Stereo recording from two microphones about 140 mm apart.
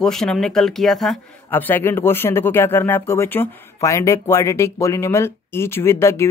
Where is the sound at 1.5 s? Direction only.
15° left (ahead or behind).